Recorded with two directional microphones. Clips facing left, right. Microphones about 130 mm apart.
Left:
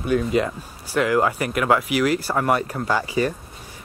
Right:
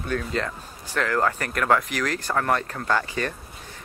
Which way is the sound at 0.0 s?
10° left (ahead or behind).